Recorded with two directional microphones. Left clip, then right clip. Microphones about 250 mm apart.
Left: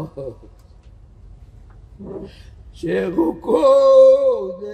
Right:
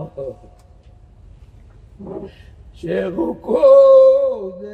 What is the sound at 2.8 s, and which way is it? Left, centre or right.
Speech, left.